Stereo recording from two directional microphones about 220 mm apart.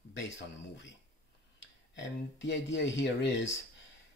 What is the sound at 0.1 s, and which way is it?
Speech, 55° left (ahead or behind).